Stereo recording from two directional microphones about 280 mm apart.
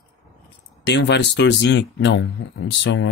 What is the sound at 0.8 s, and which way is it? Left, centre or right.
Speech, left.